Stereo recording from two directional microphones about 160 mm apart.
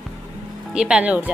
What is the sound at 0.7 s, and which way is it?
Speech, 5° right (ahead or behind).